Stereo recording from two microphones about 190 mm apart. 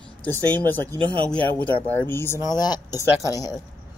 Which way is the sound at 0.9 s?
25° right (ahead or behind).